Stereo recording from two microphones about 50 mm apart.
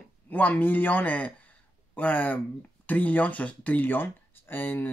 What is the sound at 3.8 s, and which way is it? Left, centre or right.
Speech, left.